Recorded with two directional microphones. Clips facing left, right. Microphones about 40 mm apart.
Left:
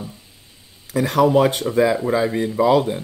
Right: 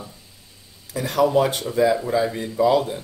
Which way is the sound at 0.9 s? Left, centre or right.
Left.